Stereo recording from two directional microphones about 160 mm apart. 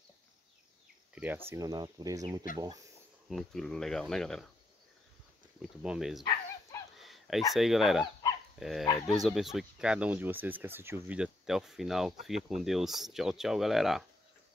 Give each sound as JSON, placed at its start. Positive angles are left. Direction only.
{"t": 1.1, "sound": "speech", "side_deg": -10}
{"t": 3.3, "sound": "speech", "side_deg": 0}
{"t": 5.6, "sound": "speech", "side_deg": -5}
{"t": 7.0, "sound": "a sound", "side_deg": 0}
{"t": 7.5, "sound": "speech", "side_deg": 0}